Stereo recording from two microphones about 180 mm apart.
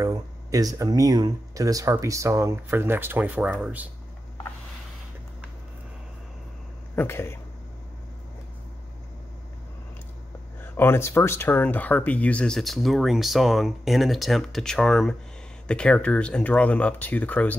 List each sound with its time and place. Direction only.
0.0 s speech: 20° right (ahead or behind)
7.0 s speech: 15° left (ahead or behind)
10.6 s speech: 15° left (ahead or behind)